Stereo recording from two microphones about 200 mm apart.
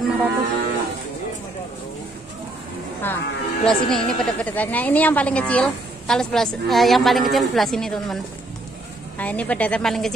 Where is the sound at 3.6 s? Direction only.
Centre (ahead or behind).